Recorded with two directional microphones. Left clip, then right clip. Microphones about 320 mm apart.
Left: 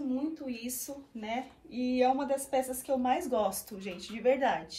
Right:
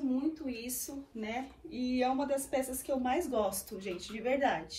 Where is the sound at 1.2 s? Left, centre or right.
Centre.